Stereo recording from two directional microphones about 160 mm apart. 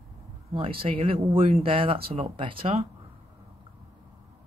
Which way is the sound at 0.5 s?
35° right (ahead or behind).